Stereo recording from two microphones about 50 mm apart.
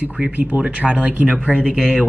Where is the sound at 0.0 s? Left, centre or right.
Right.